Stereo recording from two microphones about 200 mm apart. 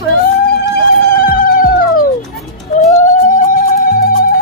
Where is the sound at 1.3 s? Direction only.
45° left (ahead or behind).